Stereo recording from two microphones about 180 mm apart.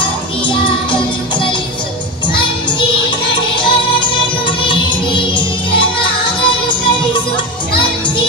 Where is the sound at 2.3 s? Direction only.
25° left (ahead or behind).